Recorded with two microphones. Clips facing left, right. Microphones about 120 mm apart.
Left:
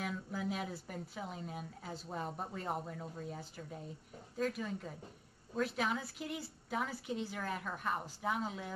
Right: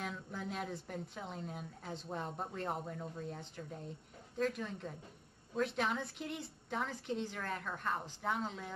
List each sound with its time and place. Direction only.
0.0 s a woman's voice: 5° left (ahead or behind)